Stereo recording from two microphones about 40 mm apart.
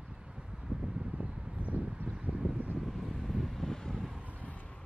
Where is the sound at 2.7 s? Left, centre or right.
Centre.